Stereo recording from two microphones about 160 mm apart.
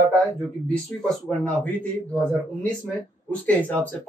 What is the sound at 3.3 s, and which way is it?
Speech, 10° left (ahead or behind).